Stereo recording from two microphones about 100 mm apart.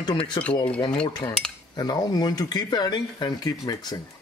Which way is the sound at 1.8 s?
40° left (ahead or behind).